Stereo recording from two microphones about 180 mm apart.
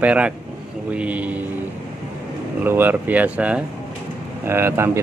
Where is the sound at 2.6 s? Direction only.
10° right (ahead or behind).